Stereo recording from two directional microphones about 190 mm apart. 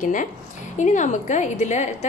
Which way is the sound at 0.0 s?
45° left (ahead or behind).